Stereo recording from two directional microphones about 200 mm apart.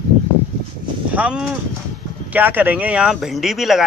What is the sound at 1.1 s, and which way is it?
Speech, 5° right (ahead or behind).